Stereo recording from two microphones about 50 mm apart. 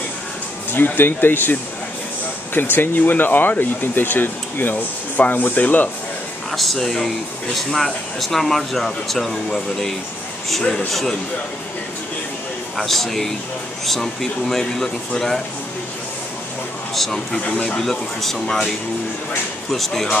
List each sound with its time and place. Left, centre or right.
0.9 s speech: left
6.5 s speech: centre
12.7 s speech: centre
16.9 s speech: centre
17.5 s speech: left
17.7 s speech: centre
19.7 s speech: centre